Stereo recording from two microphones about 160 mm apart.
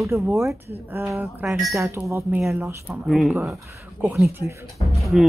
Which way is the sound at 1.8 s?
15° right (ahead or behind).